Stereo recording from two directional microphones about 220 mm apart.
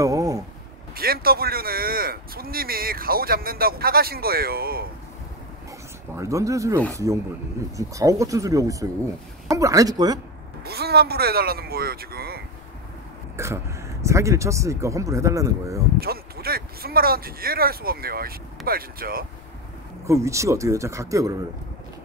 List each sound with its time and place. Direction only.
0.0 s a sound: 15° right (ahead or behind)
0.9 s speech: 45° right (ahead or behind)
6.1 s speech: 15° right (ahead or behind)
10.6 s speech: 45° right (ahead or behind)
13.4 s speech: 10° right (ahead or behind)
16.0 s speech: 45° right (ahead or behind)
20.1 s speech: 15° right (ahead or behind)